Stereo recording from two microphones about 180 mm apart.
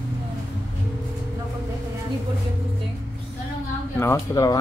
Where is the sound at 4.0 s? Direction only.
20° left (ahead or behind).